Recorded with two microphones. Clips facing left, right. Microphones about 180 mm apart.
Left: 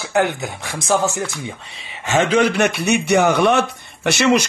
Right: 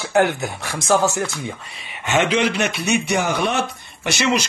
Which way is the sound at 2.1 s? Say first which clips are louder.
Left 3 dB; 40° left (ahead or behind).